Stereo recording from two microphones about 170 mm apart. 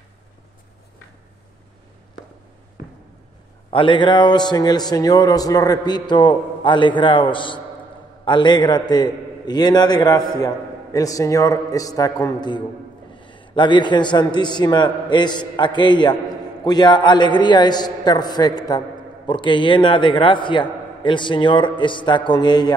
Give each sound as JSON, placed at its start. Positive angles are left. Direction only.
{"t": 3.7, "sound": "a man's voice", "side_deg": 30}